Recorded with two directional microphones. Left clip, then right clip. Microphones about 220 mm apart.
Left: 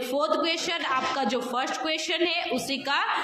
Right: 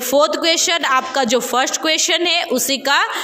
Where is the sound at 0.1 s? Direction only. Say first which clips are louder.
Right 11 dB; 35° right (ahead or behind).